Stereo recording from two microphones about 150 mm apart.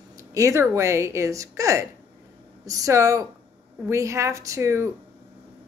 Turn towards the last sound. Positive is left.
turn(degrees=-20)  # may be behind; listen again after turning